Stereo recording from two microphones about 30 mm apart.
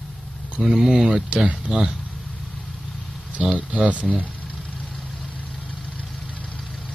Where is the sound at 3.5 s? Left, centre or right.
Right.